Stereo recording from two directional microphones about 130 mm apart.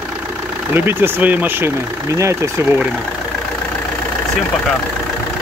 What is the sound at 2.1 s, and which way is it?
Speech, 25° right (ahead or behind).